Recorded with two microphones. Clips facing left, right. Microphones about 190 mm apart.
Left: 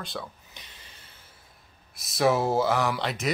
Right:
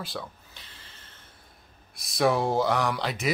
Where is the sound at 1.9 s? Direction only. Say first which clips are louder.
Left 1 dB; centre (ahead or behind).